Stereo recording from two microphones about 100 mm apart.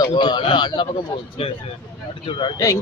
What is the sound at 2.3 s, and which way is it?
Speech, 50° left (ahead or behind).